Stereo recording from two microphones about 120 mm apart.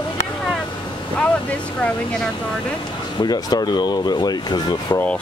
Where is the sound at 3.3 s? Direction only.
35° left (ahead or behind).